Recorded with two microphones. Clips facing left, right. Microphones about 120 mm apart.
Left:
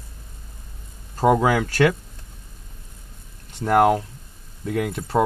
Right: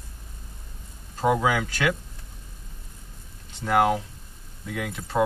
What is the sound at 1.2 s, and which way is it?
Speech, 40° left (ahead or behind).